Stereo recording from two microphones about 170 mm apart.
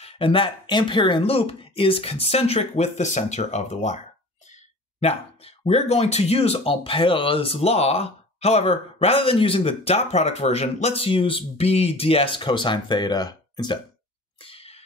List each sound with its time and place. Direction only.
0.0 s speech: 30° left (ahead or behind)
5.0 s speech: 35° left (ahead or behind)
14.4 s sneeze: 35° left (ahead or behind)